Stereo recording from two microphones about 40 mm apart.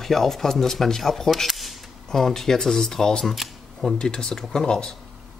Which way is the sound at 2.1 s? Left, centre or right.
Centre.